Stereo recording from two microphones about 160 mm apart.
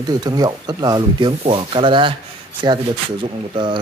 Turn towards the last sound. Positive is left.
turn(degrees=-30)  # may be behind; listen again after turning